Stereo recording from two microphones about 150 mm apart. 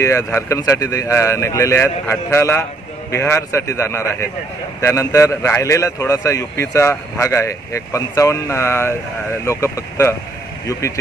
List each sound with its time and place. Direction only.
0.0 s a man's voice: 20° left (ahead or behind)